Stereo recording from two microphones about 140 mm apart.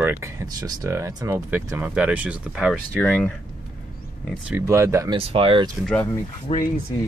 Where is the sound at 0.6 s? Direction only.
20° right (ahead or behind); by 2.7 s 5° right (ahead or behind).